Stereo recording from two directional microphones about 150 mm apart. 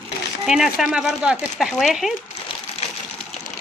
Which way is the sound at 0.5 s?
5° right (ahead or behind).